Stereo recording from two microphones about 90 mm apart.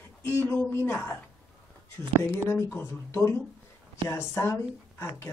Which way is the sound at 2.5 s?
30° left (ahead or behind).